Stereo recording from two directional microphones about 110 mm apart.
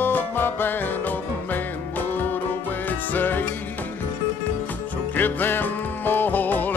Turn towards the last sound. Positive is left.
turn(degrees=15)  # may be behind; listen again after turning